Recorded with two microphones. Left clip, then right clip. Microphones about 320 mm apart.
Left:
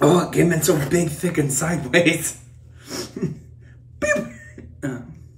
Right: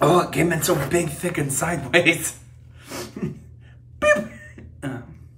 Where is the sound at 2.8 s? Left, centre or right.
Centre.